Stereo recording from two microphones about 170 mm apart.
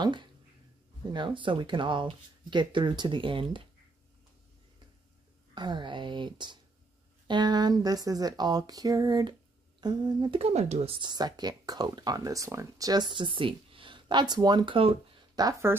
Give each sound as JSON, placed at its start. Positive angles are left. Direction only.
{"t": 0.0, "sound": "speech", "side_deg": -30}
{"t": 5.5, "sound": "speech", "side_deg": -25}
{"t": 10.4, "sound": "speech", "side_deg": -40}
{"t": 11.0, "sound": "speech", "side_deg": -25}